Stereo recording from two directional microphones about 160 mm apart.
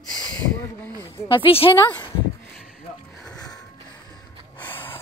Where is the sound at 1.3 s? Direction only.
35° left (ahead or behind).